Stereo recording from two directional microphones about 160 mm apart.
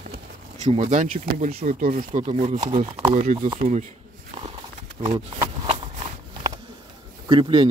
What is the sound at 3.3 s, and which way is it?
Speech, 30° right (ahead or behind).